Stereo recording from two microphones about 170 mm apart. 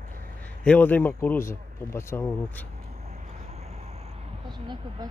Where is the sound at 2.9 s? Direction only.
45° right (ahead or behind).